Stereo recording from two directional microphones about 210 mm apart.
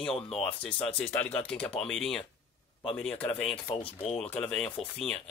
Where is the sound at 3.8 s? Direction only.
30° left (ahead or behind).